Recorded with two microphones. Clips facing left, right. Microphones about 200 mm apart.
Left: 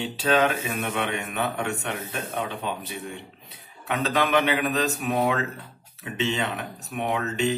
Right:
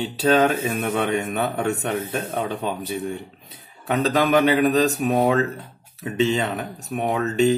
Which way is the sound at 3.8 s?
35° right (ahead or behind).